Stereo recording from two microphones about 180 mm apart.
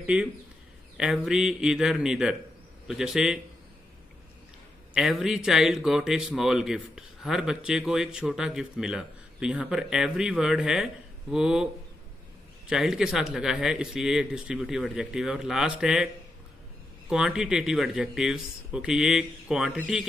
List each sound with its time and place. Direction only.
0.0 s speech: 5° right (ahead or behind)
4.9 s speech: centre (ahead or behind)
17.1 s speech: 5° right (ahead or behind)